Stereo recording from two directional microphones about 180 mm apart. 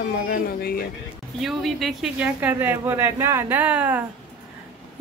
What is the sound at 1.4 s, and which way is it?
A woman's voice, centre (ahead or behind).